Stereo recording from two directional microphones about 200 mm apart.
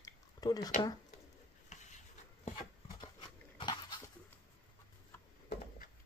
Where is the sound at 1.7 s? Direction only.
35° left (ahead or behind).